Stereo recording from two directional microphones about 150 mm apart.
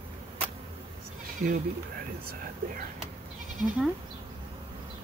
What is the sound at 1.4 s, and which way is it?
Speech, 75° right (ahead or behind).